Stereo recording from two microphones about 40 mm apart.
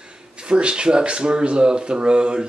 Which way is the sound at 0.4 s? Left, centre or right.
Right.